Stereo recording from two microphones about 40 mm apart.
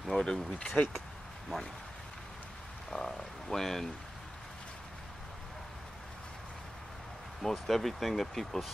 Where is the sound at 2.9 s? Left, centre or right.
Centre.